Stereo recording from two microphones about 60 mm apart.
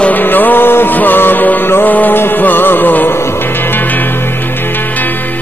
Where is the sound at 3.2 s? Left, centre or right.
Left.